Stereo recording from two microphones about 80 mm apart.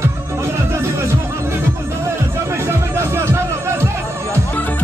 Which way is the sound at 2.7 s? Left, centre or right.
Right.